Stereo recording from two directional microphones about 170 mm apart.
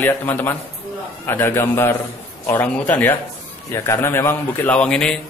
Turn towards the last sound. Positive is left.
turn(degrees=5)  # may be behind; listen again after turning